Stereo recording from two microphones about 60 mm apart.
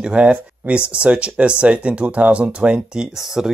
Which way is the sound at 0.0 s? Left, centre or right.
Right.